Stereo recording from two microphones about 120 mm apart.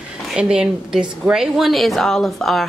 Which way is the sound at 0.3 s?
5° right (ahead or behind).